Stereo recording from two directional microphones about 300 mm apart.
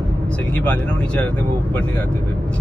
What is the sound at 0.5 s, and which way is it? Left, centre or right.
Speech, centre.